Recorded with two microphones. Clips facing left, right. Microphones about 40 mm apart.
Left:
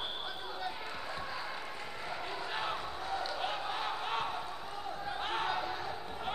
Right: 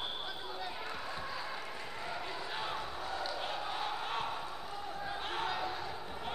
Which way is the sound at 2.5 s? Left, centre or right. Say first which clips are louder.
Left 2 dB; centre.